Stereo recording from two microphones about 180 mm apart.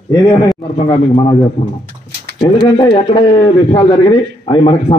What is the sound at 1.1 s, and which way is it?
A man's voice, 25° left (ahead or behind).